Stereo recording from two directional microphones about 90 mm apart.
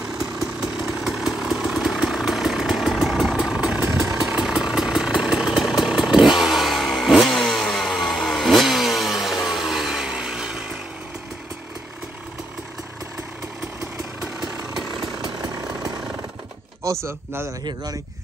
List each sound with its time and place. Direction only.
0.4 s vehicle: 5° right (ahead or behind)
16.8 s speech: 30° right (ahead or behind)